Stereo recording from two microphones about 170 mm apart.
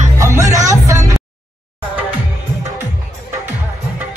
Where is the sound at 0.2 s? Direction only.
20° right (ahead or behind).